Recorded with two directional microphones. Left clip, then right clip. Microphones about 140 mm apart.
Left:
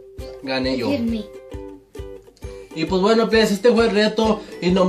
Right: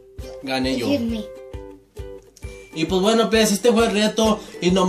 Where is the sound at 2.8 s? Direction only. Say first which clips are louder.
Left 1 dB; 10° right (ahead or behind).